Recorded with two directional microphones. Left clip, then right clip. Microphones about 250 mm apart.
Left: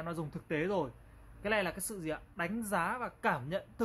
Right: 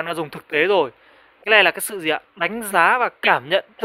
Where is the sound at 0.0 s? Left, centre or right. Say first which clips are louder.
Right 16 dB; right.